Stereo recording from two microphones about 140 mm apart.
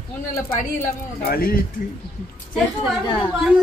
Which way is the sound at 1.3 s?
90° left.